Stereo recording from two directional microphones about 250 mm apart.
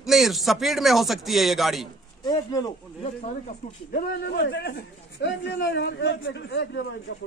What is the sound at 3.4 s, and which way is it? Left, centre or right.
A man's voice, left.